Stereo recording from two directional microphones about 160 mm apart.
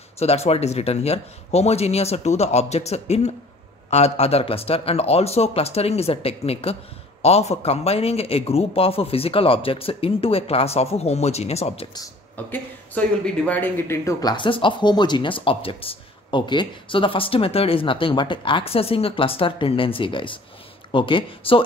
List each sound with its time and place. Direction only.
0.2 s speech: 40° left (ahead or behind)
12.4 s speech: 10° left (ahead or behind)
14.3 s speech: 30° left (ahead or behind)